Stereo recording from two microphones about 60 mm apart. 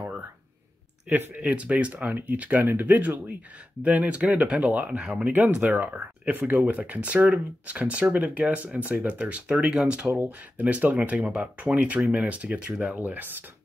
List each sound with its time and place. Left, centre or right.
1.0 s speech: right
4.8 s speech: centre
5.8 s speech: right
12.9 s speech: right